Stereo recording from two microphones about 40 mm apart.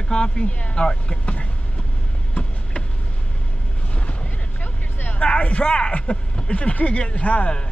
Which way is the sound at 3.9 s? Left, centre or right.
Left.